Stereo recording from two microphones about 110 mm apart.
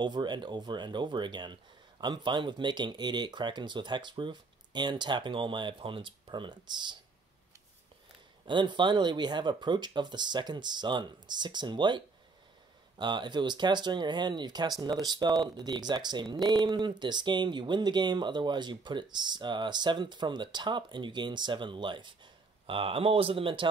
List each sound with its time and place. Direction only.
0.0 s speech: 40° right (ahead or behind)
8.5 s speech: 45° right (ahead or behind)